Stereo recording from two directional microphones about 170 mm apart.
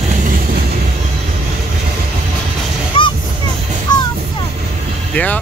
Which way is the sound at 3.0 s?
30° left (ahead or behind).